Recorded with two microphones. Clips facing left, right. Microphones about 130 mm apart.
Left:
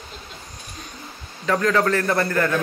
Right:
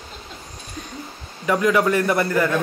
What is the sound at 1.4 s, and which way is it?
A man's voice, 15° right (ahead or behind).